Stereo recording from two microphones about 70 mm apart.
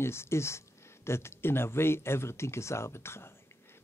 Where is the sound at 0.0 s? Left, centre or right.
Left.